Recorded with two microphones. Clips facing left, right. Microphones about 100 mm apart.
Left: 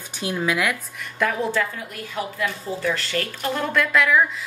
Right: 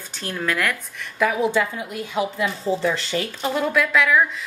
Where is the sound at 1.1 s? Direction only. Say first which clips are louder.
Right 3 dB; 10° right (ahead or behind).